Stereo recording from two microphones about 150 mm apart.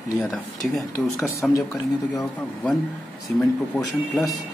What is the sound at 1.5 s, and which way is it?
Speech, 20° left (ahead or behind).